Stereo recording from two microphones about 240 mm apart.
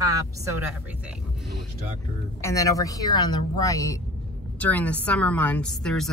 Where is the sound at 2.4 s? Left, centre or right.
Centre.